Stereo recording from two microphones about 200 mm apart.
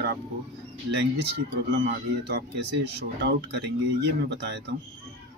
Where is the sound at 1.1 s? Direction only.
60° right (ahead or behind).